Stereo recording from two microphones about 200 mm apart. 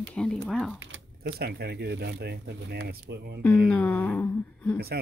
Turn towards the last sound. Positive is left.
turn(degrees=10)  # may be behind; listen again after turning